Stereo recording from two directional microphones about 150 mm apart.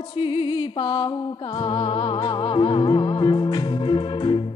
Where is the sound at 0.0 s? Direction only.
35° left (ahead or behind).